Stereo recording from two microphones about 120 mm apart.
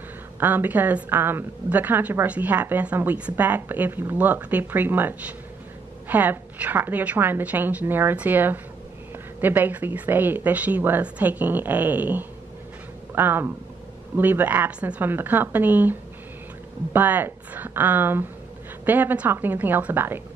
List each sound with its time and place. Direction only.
0.4 s a woman's voice: 15° right (ahead or behind)